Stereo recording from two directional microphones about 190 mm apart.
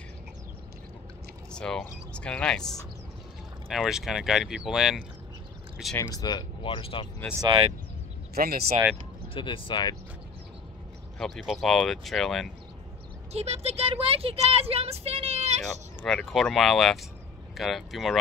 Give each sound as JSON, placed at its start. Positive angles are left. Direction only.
{"t": 1.5, "sound": "speech", "side_deg": 5}
{"t": 5.9, "sound": "speech", "side_deg": 20}
{"t": 7.4, "sound": "speech", "side_deg": -30}
{"t": 8.4, "sound": "speech", "side_deg": -55}
{"t": 9.3, "sound": "speech", "side_deg": 25}
{"t": 11.1, "sound": "speech", "side_deg": 0}
{"t": 13.3, "sound": "speech", "side_deg": -35}
{"t": 15.6, "sound": "speech", "side_deg": 5}